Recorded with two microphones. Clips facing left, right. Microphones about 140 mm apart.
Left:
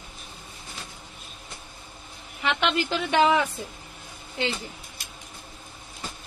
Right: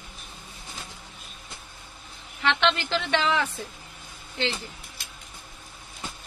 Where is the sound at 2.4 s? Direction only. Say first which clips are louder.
Right 1 dB; 5° left (ahead or behind).